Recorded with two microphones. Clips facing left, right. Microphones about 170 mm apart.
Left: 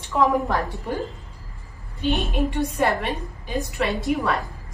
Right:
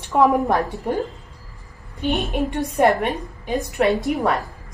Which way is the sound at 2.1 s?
20° right (ahead or behind).